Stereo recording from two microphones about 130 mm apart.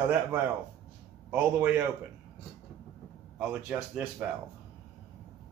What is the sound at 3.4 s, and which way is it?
Speech, 10° right (ahead or behind).